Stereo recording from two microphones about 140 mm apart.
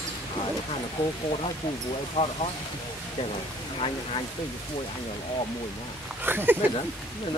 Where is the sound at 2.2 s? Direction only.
55° left (ahead or behind).